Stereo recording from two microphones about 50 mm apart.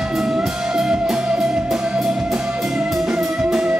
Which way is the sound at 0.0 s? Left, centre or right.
Centre.